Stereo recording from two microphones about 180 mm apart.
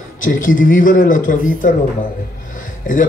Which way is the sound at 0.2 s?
45° left (ahead or behind).